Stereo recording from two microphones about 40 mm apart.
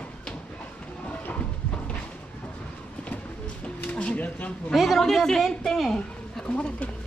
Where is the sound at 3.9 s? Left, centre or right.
Left.